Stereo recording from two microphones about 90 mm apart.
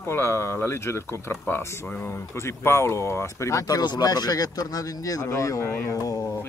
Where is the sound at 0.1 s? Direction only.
30° left (ahead or behind).